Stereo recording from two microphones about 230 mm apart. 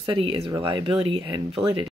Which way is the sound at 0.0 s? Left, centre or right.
Right.